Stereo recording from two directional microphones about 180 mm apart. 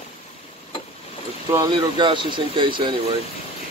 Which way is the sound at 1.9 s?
25° right (ahead or behind).